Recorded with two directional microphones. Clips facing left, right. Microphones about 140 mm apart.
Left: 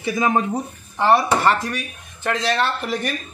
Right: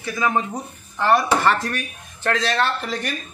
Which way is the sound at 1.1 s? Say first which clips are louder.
Left 1 dB; 10° left (ahead or behind).